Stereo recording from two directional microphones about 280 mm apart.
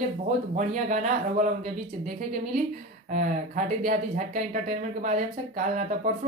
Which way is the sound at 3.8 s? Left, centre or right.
Right.